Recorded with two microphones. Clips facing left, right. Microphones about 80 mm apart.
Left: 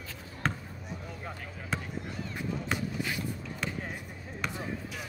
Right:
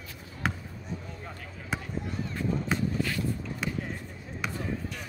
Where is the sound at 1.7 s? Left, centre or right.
Centre.